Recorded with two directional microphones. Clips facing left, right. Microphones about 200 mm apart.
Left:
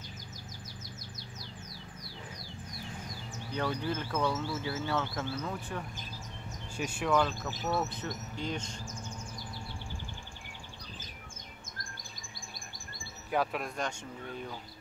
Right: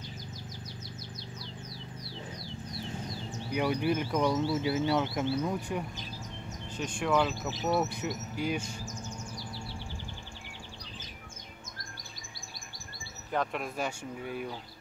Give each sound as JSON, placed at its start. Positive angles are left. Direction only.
{"t": 3.5, "sound": "speech", "side_deg": -15}
{"t": 6.8, "sound": "speech", "side_deg": 5}
{"t": 7.1, "sound": "speech", "side_deg": -5}
{"t": 13.3, "sound": "speech", "side_deg": 5}